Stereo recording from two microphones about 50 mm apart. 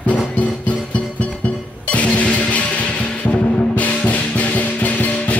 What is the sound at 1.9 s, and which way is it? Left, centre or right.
Music, left.